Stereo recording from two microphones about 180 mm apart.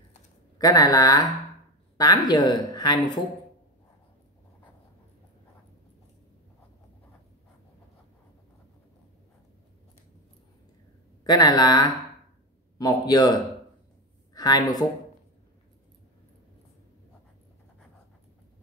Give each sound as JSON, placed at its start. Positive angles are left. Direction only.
{"t": 0.6, "sound": "speech", "side_deg": 20}
{"t": 11.2, "sound": "speech", "side_deg": 20}
{"t": 14.3, "sound": "a woman's voice", "side_deg": 20}